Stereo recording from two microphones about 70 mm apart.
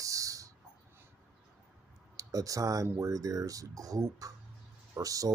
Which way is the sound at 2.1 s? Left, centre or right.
Right.